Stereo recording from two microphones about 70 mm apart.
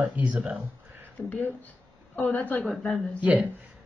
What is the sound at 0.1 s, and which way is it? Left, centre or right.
Speech, centre.